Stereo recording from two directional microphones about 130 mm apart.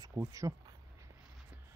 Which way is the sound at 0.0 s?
25° right (ahead or behind).